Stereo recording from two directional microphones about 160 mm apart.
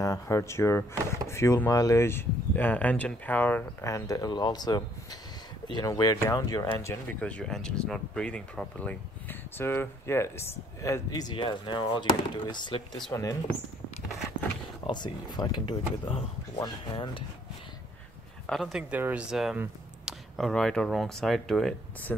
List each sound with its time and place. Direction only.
0.0 s speech: 20° left (ahead or behind)
14.9 s speech: 25° left (ahead or behind)
18.5 s speech: centre (ahead or behind)